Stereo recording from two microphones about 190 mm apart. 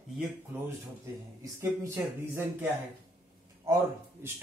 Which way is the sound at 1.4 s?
15° right (ahead or behind).